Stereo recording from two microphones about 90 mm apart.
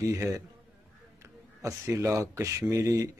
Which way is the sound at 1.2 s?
35° right (ahead or behind).